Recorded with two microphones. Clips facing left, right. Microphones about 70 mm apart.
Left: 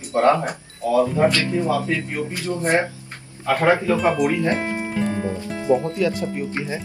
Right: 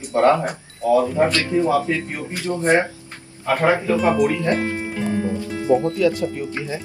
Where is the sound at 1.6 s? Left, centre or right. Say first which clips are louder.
Right 2 dB; right.